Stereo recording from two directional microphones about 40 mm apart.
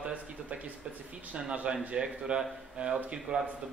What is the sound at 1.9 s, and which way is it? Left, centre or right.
Speech, right.